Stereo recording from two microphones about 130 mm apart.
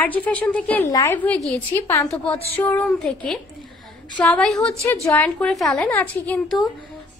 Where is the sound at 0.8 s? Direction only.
25° left (ahead or behind).